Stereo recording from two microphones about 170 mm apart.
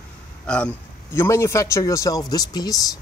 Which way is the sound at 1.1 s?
15° left (ahead or behind).